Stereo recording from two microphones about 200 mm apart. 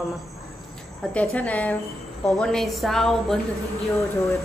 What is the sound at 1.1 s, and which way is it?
A woman's voice, 5° left (ahead or behind).